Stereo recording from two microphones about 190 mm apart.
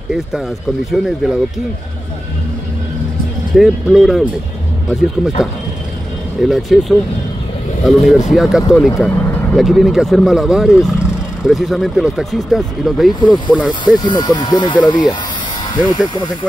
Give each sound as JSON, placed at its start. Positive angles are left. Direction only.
{"t": 0.9, "sound": "speech", "side_deg": 0}
{"t": 3.5, "sound": "speech", "side_deg": 0}
{"t": 6.4, "sound": "speech", "side_deg": 0}
{"t": 13.8, "sound": "speech", "side_deg": 20}